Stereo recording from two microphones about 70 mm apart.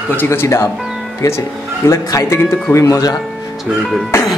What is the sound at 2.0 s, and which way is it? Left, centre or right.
Speech, left.